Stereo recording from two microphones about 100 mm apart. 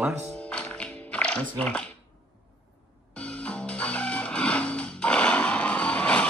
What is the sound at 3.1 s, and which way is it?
Music, 15° left (ahead or behind).